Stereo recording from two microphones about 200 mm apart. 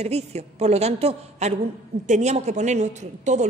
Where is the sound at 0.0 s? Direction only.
30° right (ahead or behind).